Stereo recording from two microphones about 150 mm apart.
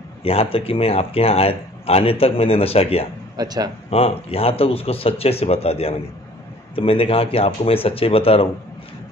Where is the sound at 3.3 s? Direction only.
25° right (ahead or behind).